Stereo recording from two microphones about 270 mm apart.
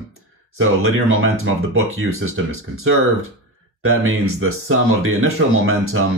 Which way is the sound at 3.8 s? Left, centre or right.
Right.